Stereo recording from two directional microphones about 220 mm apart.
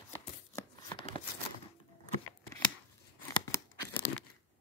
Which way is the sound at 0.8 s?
25° left (ahead or behind).